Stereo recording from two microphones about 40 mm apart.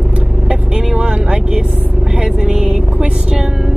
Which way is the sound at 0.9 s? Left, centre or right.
Right.